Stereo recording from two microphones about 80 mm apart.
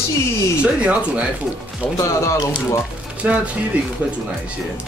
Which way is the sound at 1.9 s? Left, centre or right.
Left.